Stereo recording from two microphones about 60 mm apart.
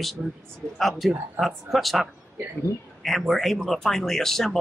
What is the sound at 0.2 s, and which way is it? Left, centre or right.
A man's voice, centre.